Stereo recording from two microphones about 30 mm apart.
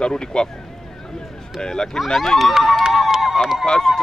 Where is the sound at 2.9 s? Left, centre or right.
Centre.